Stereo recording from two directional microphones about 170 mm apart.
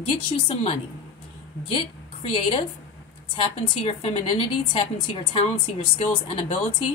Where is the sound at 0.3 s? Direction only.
30° left (ahead or behind).